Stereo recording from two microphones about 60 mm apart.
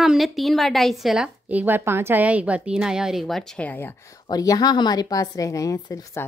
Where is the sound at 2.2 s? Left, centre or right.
Right.